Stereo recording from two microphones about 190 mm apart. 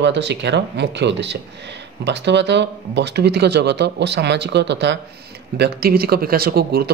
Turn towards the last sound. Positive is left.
turn(degrees=-50)  # may be behind; listen again after turning